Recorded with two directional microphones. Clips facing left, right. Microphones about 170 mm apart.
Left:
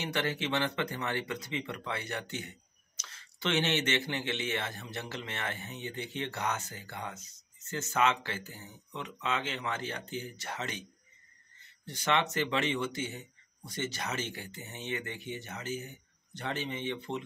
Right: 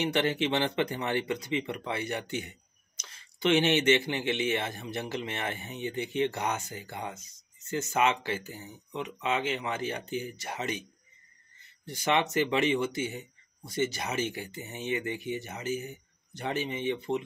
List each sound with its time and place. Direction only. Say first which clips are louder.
0.0 s speech: right 6 dB; 20° right (ahead or behind)
11.8 s speech: right 3 dB; 10° right (ahead or behind)